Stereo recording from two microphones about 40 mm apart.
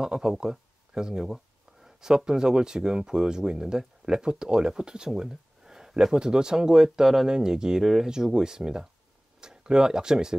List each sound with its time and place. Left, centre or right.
0.0 s speech: centre
7.8 s speech: centre